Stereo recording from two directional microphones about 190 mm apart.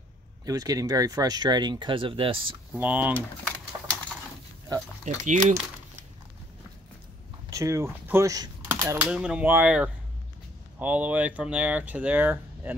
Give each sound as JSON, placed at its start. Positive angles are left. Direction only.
{"t": 0.5, "sound": "speech", "side_deg": -20}
{"t": 2.7, "sound": "speech", "side_deg": -10}
{"t": 5.0, "sound": "speech", "side_deg": -40}
{"t": 7.4, "sound": "speech", "side_deg": -15}